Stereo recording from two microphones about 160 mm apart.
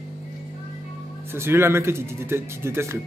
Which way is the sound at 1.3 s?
15° right (ahead or behind).